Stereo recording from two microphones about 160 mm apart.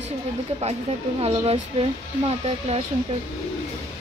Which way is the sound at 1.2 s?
40° right (ahead or behind).